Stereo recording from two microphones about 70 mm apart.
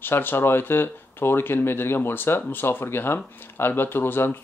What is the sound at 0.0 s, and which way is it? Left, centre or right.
Speech, left.